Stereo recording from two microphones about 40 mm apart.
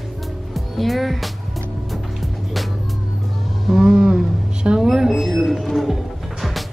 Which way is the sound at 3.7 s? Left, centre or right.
Centre.